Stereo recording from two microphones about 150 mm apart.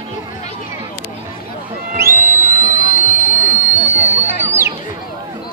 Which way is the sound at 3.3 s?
15° right (ahead or behind).